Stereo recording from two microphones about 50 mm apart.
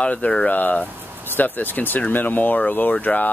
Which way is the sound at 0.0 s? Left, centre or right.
Left.